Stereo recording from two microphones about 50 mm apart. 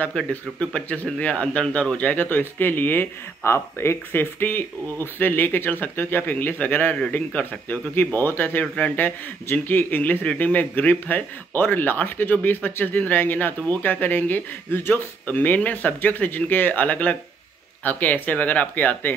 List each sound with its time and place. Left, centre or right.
0.3 s speech: left
3.4 s speech: left